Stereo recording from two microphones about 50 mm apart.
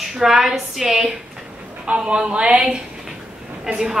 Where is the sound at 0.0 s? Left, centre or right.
Centre.